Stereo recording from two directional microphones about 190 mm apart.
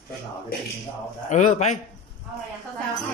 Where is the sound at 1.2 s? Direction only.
40° left (ahead or behind).